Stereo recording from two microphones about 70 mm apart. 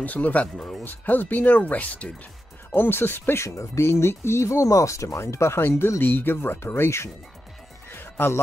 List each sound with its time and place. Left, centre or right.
0.0 s speech: left
0.6 s speech: centre
0.8 s speech: left
2.7 s speech: left
7.9 s music: left